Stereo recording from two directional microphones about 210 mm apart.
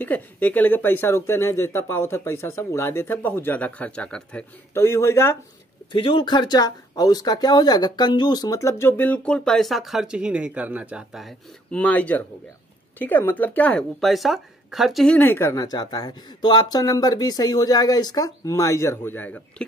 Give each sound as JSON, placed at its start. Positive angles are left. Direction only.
{"t": 0.0, "sound": "speech", "side_deg": 10}
{"t": 5.9, "sound": "speech", "side_deg": 25}